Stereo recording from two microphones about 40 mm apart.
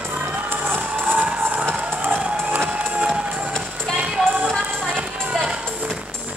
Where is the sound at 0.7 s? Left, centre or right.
Right.